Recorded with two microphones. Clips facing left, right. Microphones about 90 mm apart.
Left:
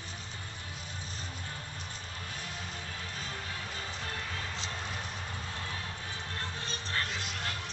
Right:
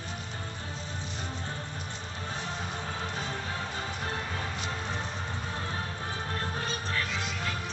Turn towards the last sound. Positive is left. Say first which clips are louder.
# right 3 dB
turn(degrees=40)  # may be behind; listen again after turning